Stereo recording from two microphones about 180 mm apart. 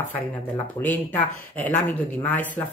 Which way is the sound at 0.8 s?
10° left (ahead or behind).